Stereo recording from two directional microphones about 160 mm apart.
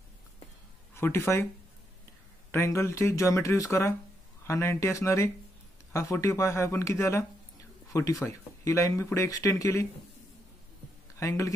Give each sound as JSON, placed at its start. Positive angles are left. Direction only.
{"t": 0.9, "sound": "speech", "side_deg": 15}
{"t": 2.5, "sound": "speech", "side_deg": 20}
{"t": 11.1, "sound": "speech", "side_deg": 20}